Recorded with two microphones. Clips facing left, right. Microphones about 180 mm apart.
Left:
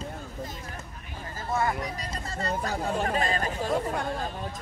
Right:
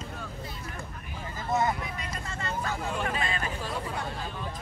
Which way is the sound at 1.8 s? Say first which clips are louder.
Left 2 dB; 35° left (ahead or behind).